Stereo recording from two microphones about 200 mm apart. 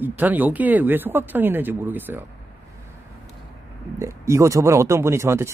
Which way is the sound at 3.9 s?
15° right (ahead or behind).